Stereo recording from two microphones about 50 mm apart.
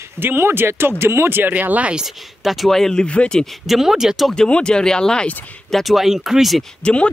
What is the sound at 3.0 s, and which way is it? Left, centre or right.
Speech, left.